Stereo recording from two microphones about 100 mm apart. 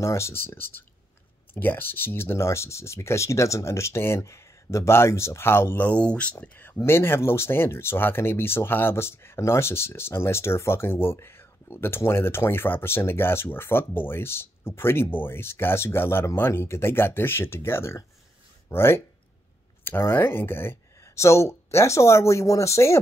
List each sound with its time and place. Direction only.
0.0 s speech: 30° left (ahead or behind)